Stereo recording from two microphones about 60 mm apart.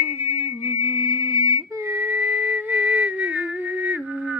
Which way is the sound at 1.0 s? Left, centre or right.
Right.